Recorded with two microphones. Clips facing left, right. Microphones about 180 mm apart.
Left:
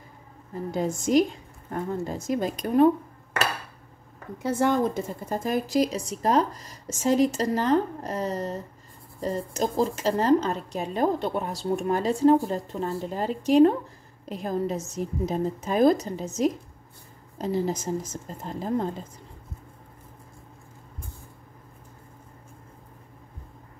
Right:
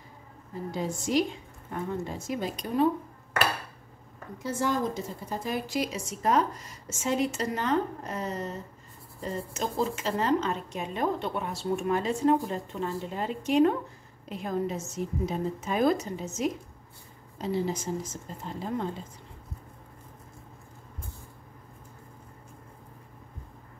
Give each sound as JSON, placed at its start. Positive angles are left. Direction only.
{"t": 0.7, "sound": "speech", "side_deg": 45}
{"t": 4.4, "sound": "a woman's voice", "side_deg": 60}